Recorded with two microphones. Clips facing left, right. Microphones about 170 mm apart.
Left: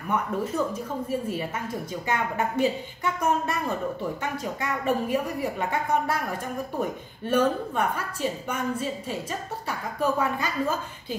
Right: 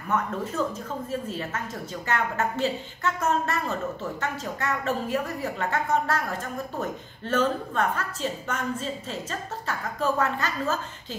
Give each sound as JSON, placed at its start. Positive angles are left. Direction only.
{"t": 0.6, "sound": "a woman's voice", "side_deg": 15}